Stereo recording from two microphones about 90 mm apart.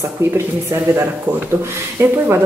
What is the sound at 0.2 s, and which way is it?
A woman's voice, 30° right (ahead or behind).